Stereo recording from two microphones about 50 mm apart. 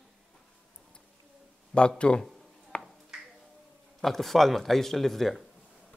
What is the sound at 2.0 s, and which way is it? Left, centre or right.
Speech, left.